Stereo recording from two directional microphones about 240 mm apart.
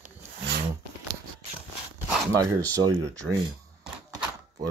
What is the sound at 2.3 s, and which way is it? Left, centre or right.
Speech, centre.